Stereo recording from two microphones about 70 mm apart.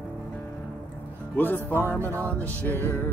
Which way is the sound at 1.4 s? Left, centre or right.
Left.